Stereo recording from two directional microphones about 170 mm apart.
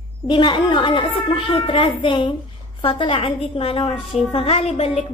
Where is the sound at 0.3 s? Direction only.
30° left (ahead or behind).